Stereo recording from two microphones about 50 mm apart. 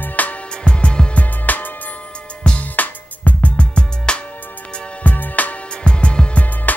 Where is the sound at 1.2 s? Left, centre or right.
Left; by 4.2 s centre.